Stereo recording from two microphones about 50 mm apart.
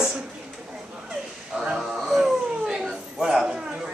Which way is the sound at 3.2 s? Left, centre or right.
Centre.